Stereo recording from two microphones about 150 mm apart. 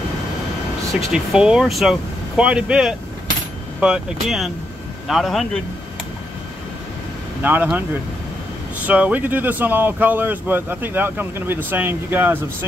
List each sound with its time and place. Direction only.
1.1 s speech: 5° right (ahead or behind)
7.4 s speech: 10° right (ahead or behind)
8.8 s speech: 10° right (ahead or behind)